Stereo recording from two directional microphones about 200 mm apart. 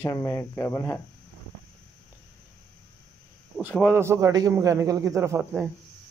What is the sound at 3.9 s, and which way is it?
A man's voice, 15° right (ahead or behind).